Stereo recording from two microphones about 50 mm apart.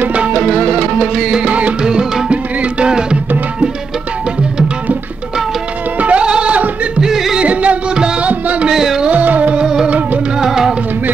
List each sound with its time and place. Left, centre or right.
0.1 s music: right
1.5 s music: right
1.9 s music: centre
5.9 s music: right
7.0 s music: centre
7.3 s music: right
8.6 s music: centre
9.1 s music: right
10.4 s music: centre